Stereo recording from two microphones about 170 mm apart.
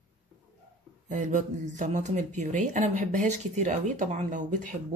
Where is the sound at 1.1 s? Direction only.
45° right (ahead or behind).